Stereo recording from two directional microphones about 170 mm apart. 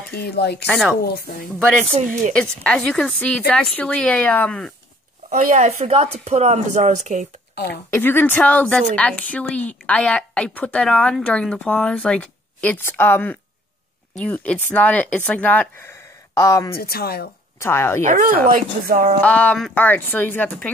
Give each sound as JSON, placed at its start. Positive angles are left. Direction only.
{"t": 0.1, "sound": "speech", "side_deg": 70}
{"t": 0.7, "sound": "a woman's voice", "side_deg": 0}
{"t": 1.0, "sound": "speech", "side_deg": 65}
{"t": 1.9, "sound": "speech", "side_deg": -40}
{"t": 2.3, "sound": "a woman's voice", "side_deg": 5}
{"t": 5.3, "sound": "speech", "side_deg": -45}
{"t": 7.6, "sound": "a woman's voice", "side_deg": 10}
{"t": 16.7, "sound": "speech", "side_deg": 65}
{"t": 17.6, "sound": "a woman's voice", "side_deg": 15}
{"t": 18.0, "sound": "speech", "side_deg": -50}
{"t": 19.2, "sound": "a woman's voice", "side_deg": 10}